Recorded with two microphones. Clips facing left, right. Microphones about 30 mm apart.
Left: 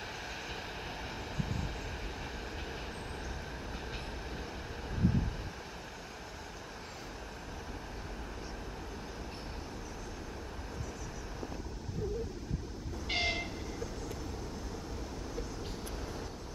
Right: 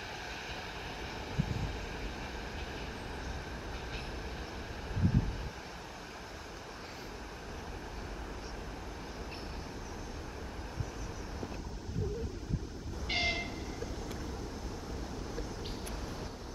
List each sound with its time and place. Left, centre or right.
13.1 s train: centre